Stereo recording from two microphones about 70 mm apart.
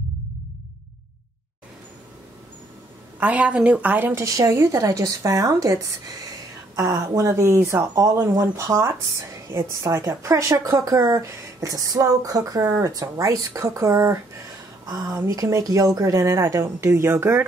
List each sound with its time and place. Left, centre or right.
3.2 s a woman's voice: centre
4.1 s a woman's voice: right